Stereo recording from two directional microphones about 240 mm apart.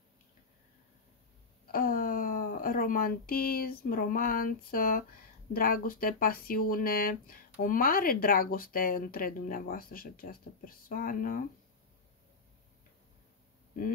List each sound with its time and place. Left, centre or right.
1.7 s speech: left